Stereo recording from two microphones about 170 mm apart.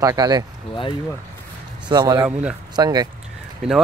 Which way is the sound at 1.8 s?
25° right (ahead or behind).